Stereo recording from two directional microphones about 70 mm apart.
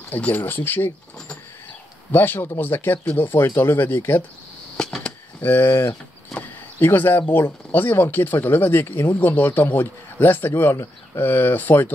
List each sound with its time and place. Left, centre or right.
0.1 s speech: left
2.1 s speech: left
4.7 s arrow: centre
5.4 s speech: left
6.3 s speech: left